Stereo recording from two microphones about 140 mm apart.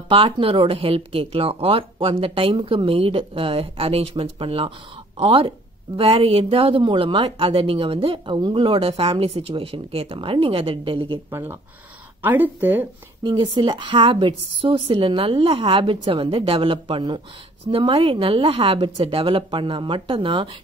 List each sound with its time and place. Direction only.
0.1 s speech: 40° right (ahead or behind)
11.2 s speech: 15° right (ahead or behind)
13.2 s speech: 30° right (ahead or behind)